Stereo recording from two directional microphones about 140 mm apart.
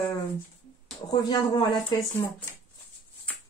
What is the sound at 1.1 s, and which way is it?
Speech, 30° left (ahead or behind).